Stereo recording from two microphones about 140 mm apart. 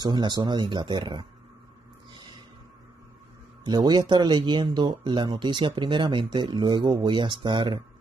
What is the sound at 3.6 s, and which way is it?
Speech, 30° right (ahead or behind).